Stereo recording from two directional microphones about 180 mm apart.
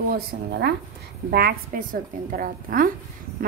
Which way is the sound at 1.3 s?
55° right (ahead or behind).